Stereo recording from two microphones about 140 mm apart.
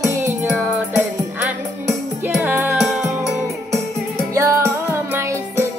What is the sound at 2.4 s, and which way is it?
Music, 15° right (ahead or behind).